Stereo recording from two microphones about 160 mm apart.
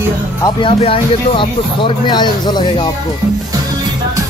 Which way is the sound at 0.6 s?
35° left (ahead or behind).